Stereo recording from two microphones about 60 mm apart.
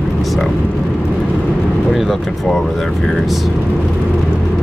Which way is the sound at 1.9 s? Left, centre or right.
Centre.